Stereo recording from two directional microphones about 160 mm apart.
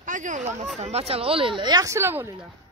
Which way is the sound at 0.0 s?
50° right (ahead or behind).